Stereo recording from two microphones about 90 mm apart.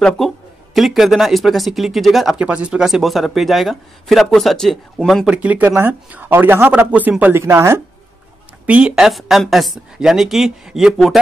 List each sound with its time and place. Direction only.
0.7 s a woman's voice: centre (ahead or behind)
2.3 s a woman's voice: 15° right (ahead or behind)
5.2 s speech: 15° right (ahead or behind)
8.6 s a woman's voice: 10° right (ahead or behind)